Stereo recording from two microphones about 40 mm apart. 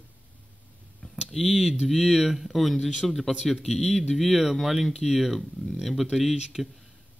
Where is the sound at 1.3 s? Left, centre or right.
Centre.